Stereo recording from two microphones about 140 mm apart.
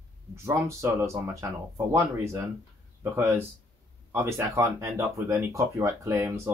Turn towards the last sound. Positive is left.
turn(degrees=-15)  # may be behind; listen again after turning